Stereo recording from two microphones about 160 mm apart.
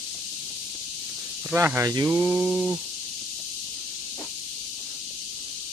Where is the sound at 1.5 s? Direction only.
15° right (ahead or behind).